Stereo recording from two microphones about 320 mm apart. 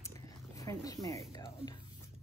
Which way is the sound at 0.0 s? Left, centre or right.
Centre.